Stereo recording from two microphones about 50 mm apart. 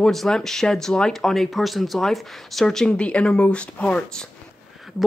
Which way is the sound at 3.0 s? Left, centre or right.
Left.